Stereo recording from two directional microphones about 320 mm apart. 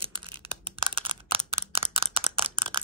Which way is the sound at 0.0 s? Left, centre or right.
Centre.